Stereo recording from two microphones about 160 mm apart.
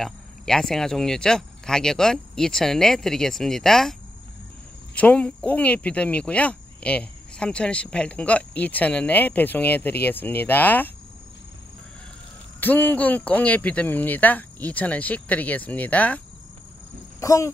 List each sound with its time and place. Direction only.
0.0 s speech: 5° left (ahead or behind)
4.9 s speech: 10° left (ahead or behind)
12.5 s speech: 10° left (ahead or behind)
17.2 s speech: 20° left (ahead or behind)